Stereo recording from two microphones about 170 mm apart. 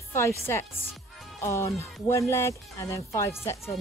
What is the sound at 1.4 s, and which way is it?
Speech, 15° left (ahead or behind).